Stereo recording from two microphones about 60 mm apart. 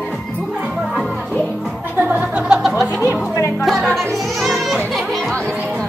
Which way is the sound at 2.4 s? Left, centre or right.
Centre.